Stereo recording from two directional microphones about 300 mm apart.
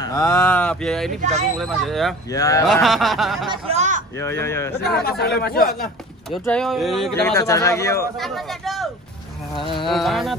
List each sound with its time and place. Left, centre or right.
0.0 s a man's voice: centre
2.3 s speech: centre
2.6 s a man's voice: centre
3.4 s a sound: centre
4.2 s speech: centre
5.0 s speech: left
6.3 s a man's voice: centre
9.6 s speech: centre
9.8 s a man's voice: centre